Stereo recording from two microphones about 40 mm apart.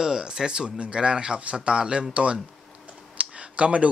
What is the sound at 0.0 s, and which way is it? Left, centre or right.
Speech, centre.